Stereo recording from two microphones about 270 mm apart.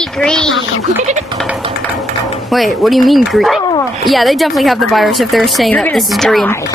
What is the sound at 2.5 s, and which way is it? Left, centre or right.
Speech, centre.